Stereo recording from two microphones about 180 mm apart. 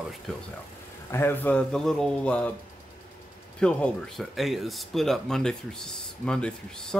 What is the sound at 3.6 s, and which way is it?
A man's voice, 5° left (ahead or behind).